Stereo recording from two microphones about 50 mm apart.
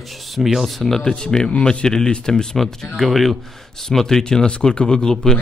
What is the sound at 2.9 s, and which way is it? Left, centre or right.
Speech, centre.